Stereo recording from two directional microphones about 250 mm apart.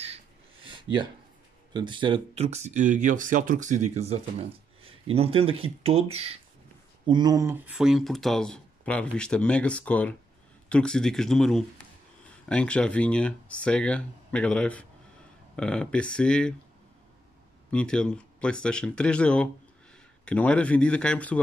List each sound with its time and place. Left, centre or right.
0.0 s a sound: right
1.7 s speech: centre
17.6 s speech: centre